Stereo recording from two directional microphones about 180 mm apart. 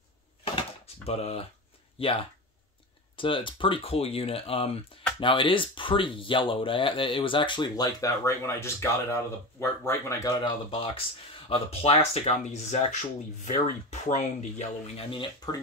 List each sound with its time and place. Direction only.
0.5 s a sound: 30° left (ahead or behind)
2.0 s speech: 30° left (ahead or behind)
3.2 s speech: 30° left (ahead or behind)
10.3 s speech: 30° left (ahead or behind)
13.4 s speech: 45° left (ahead or behind)